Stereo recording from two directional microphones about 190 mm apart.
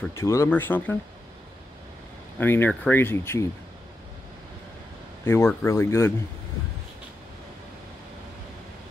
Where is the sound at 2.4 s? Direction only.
10° left (ahead or behind).